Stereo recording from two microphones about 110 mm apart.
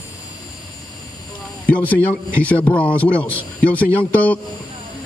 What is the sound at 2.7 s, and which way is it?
Speech, 15° left (ahead or behind).